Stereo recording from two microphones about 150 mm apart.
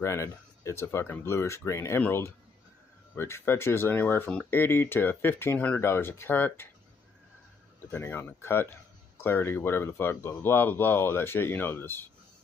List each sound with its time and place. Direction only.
0.0 s speech: 20° left (ahead or behind)
7.9 s speech: 15° left (ahead or behind)